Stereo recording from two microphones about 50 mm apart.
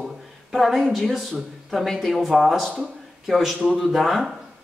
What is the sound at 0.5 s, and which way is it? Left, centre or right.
Speech, centre.